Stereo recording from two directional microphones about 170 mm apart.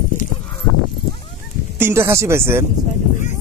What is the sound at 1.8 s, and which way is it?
Speech, 15° right (ahead or behind).